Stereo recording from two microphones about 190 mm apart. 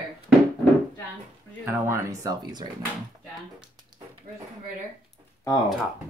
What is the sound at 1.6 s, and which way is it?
Speech, 15° right (ahead or behind).